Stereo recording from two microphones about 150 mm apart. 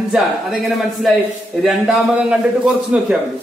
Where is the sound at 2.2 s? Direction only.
5° right (ahead or behind).